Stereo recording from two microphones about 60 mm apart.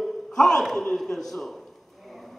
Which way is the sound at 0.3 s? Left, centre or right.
Centre.